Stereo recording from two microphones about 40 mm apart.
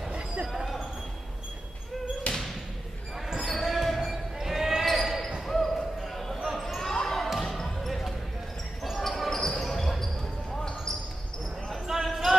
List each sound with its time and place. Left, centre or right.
2.3 s a sound: left
3.4 s basketball bounce: centre
12.0 s basketball bounce: centre